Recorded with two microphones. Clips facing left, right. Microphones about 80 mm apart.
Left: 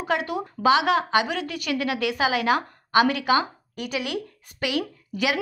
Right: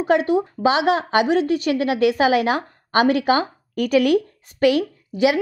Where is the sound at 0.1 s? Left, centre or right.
Right.